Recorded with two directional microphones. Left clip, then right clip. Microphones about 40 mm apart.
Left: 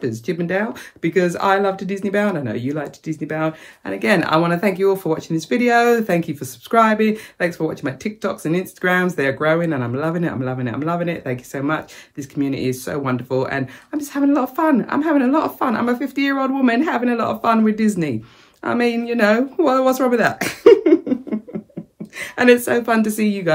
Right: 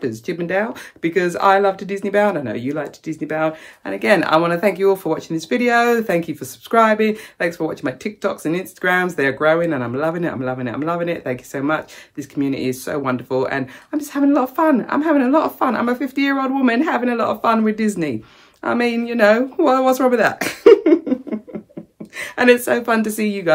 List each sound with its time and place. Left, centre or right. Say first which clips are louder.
0.0 s speech: even; right
10.4 s speech: right 1 dB; right
10.8 s a woman's voice: right 1 dB; right